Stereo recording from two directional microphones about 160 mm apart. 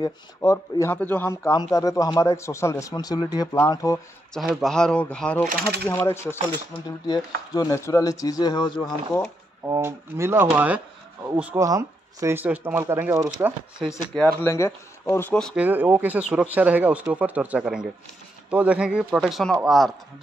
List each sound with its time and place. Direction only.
0.0 s speech: 20° left (ahead or behind)
4.3 s speech: centre (ahead or behind); by 8.9 s 25° left (ahead or behind)
9.7 s speech: 15° right (ahead or behind)
13.7 s speech: 5° right (ahead or behind)
14.2 s speech: 15° left (ahead or behind)
15.5 s speech: 10° right (ahead or behind)